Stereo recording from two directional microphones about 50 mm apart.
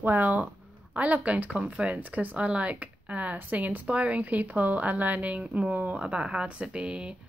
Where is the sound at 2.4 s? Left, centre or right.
Right.